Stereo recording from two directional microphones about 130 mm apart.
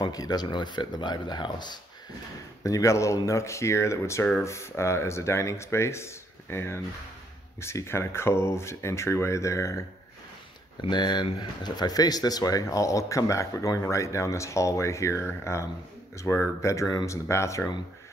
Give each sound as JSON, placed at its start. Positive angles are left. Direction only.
{"t": 0.0, "sound": "speech", "side_deg": 30}
{"t": 10.9, "sound": "speech", "side_deg": 35}